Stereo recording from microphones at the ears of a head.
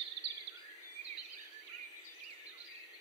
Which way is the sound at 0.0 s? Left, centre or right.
Right.